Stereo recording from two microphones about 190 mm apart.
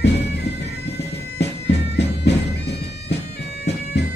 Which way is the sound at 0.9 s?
65° left (ahead or behind).